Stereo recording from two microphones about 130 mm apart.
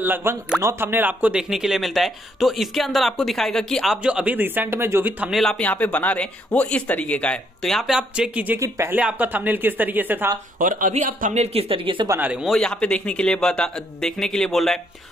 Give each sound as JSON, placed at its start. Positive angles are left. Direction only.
{"t": 0.0, "sound": "speech", "side_deg": -15}
{"t": 5.3, "sound": "speech", "side_deg": 5}
{"t": 8.5, "sound": "speech", "side_deg": -25}
{"t": 10.6, "sound": "speech", "side_deg": -90}
{"t": 11.4, "sound": "speech", "side_deg": -50}
{"t": 12.2, "sound": "speech", "side_deg": -5}